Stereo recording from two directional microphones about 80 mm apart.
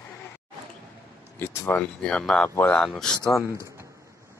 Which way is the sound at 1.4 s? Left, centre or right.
Left.